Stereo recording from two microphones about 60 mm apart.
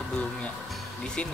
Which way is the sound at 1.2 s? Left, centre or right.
Left.